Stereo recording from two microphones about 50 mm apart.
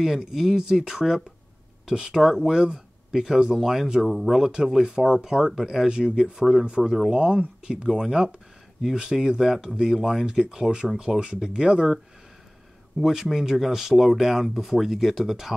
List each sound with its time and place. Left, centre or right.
0.0 s speech: centre
4.5 s speech: centre
7.2 s speech: centre
13.0 s speech: centre